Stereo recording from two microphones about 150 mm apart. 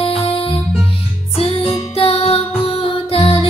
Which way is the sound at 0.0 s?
40° left (ahead or behind).